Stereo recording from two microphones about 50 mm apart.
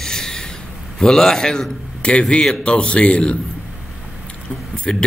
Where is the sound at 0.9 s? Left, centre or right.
Centre.